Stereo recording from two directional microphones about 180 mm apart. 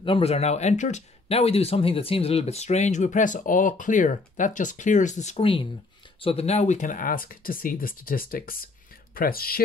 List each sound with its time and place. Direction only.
0.0 s speech: 30° left (ahead or behind); by 9.6 s 55° left (ahead or behind)